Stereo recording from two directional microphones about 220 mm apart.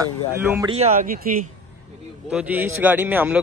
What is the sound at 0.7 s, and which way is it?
Speech, 35° right (ahead or behind).